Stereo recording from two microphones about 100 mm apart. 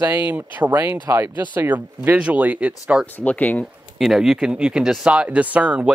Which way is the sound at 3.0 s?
15° left (ahead or behind).